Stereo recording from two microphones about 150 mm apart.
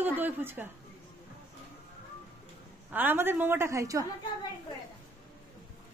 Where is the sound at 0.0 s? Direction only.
10° right (ahead or behind).